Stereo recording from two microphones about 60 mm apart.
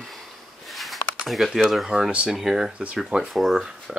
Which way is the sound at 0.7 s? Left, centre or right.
Centre.